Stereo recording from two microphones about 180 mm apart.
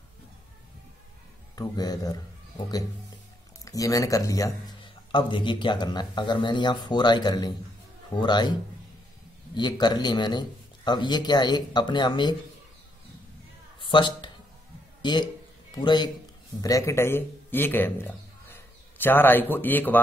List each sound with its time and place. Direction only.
1.5 s speech: 20° left (ahead or behind)
3.6 s speech: 20° left (ahead or behind)
9.6 s speech: 25° left (ahead or behind)
13.7 s a sound: 25° left (ahead or behind)
15.0 s a man's voice: 25° left (ahead or behind)